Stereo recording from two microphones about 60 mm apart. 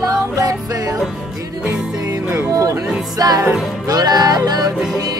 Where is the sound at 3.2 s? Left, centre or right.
Right.